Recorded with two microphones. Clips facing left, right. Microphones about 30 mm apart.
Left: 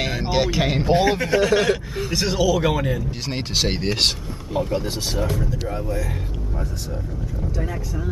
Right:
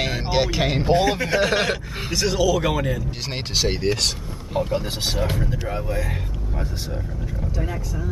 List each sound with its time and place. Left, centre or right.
0.0 s speech: centre
1.4 s speech: right
2.1 s a man's voice: centre
3.5 s speech: centre
4.6 s a man's voice: centre
5.0 s speech: right